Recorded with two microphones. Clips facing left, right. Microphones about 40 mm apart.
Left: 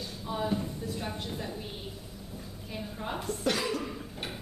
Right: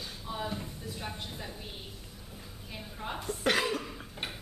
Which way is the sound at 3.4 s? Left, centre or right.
Right.